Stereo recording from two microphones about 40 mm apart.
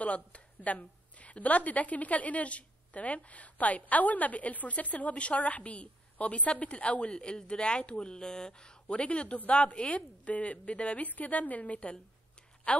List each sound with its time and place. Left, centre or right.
0.0 s a woman's voice: left; by 8.9 s centre
8.9 s a woman's voice: left